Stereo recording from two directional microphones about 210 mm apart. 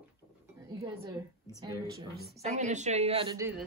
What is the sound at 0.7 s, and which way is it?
Speech, 15° right (ahead or behind).